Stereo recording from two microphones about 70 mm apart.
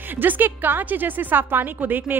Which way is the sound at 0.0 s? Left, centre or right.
Right.